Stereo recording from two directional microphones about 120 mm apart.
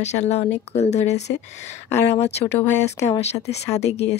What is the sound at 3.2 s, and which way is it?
Speech, 65° left (ahead or behind).